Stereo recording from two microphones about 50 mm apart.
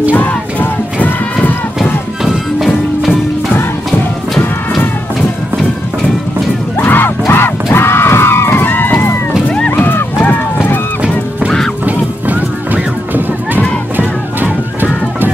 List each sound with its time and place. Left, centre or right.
0.1 s music: left
1.0 s a sound: left
2.6 s music: centre
6.8 s music: left
9.7 s run: left
11.0 s music: centre
11.8 s music: right